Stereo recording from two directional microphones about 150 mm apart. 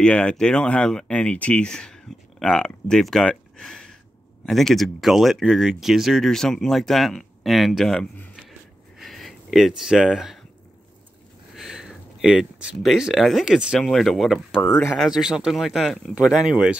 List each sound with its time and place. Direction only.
0.0 s speech: 5° left (ahead or behind)
11.5 s speech: 5° right (ahead or behind)
14.7 s speech: 15° left (ahead or behind)
15.0 s speech: 5° right (ahead or behind)